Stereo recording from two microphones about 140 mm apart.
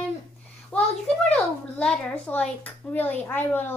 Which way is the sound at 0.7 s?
10° left (ahead or behind).